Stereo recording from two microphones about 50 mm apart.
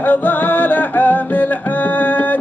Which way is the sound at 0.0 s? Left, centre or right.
Left.